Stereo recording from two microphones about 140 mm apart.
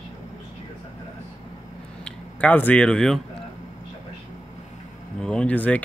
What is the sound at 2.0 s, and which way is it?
Speech, 10° left (ahead or behind).